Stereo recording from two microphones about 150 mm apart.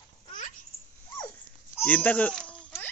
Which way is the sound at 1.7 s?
10° left (ahead or behind).